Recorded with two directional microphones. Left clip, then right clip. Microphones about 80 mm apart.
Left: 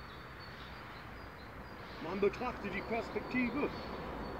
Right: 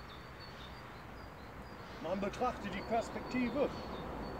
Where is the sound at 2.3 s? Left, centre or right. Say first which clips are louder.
Right 2 dB; right.